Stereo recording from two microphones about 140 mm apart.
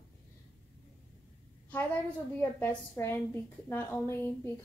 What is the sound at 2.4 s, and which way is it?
A woman's voice, 15° left (ahead or behind).